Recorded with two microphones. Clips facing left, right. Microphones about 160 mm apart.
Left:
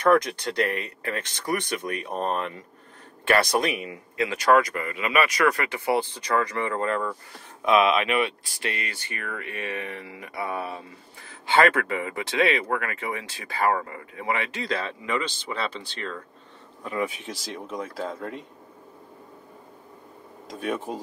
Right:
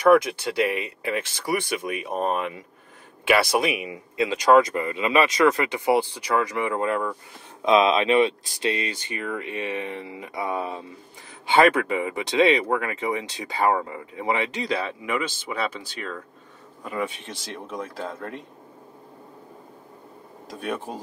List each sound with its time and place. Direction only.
0.0 s speech: 10° right (ahead or behind)
7.6 s speech: 25° right (ahead or behind); by 18.4 s centre (ahead or behind)
20.5 s speech: centre (ahead or behind)